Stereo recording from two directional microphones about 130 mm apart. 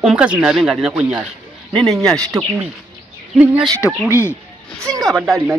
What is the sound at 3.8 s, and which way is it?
Speech, 20° left (ahead or behind).